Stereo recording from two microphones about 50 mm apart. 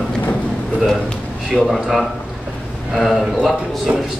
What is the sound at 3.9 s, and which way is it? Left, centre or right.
Speech, right.